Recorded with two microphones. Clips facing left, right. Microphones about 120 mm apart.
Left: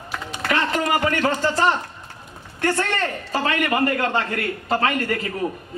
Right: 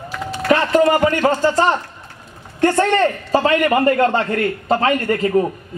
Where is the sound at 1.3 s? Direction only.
40° right (ahead or behind).